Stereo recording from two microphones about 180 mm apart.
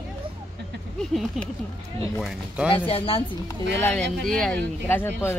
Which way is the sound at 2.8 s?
30° left (ahead or behind).